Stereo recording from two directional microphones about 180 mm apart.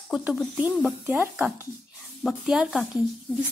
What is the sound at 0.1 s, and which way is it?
Speech, centre (ahead or behind).